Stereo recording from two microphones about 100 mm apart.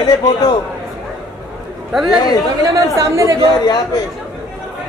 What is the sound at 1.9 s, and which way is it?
Speech, centre (ahead or behind).